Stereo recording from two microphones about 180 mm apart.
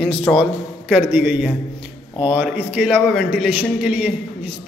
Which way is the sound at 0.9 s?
5° right (ahead or behind).